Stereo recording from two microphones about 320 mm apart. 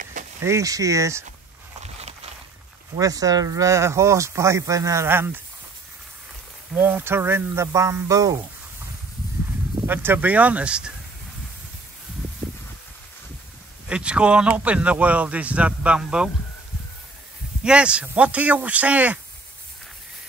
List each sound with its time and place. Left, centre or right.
0.0 s a sound: right
0.4 s speech: centre
1.8 s a sound: centre
3.0 s speech: centre
6.7 s speech: centre
9.8 s speech: centre
13.8 s speech: centre
17.6 s speech: centre